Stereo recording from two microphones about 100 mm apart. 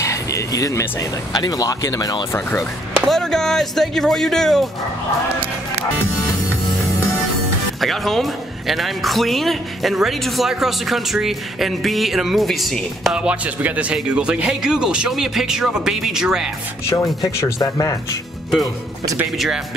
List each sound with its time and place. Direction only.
0.0 s speech: 30° left (ahead or behind)
3.1 s a woman's voice: 5° left (ahead or behind)
7.8 s a woman's voice: centre (ahead or behind)
13.1 s speech: 10° right (ahead or behind)
16.8 s speech: 35° left (ahead or behind)
19.3 s a woman's voice: centre (ahead or behind)